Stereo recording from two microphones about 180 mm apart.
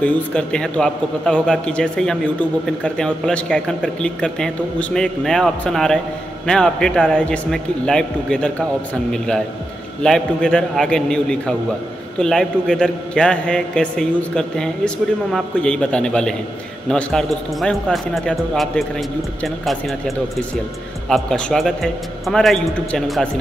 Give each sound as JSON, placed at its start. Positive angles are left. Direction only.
{"t": 0.0, "sound": "a man's voice", "side_deg": 5}
{"t": 10.0, "sound": "a man's voice", "side_deg": 5}